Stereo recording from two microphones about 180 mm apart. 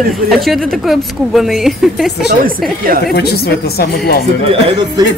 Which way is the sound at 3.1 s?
65° left (ahead or behind).